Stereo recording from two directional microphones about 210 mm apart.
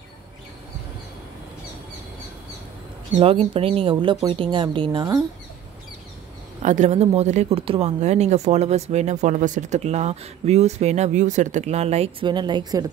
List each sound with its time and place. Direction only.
3.2 s speech: 25° right (ahead or behind)
6.6 s speech: 35° right (ahead or behind)